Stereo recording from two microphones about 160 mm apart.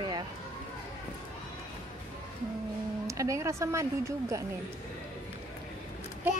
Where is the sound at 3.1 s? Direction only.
20° right (ahead or behind).